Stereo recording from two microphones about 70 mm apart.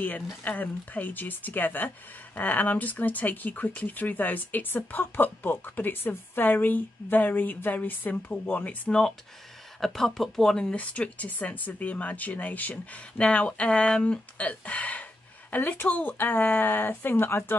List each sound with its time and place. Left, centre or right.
0.0 s speech: left
9.8 s speech: centre
10.7 s speech: centre